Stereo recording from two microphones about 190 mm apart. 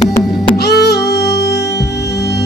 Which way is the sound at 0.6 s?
60° left (ahead or behind).